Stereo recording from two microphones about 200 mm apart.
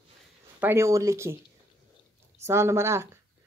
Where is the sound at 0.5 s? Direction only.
10° right (ahead or behind).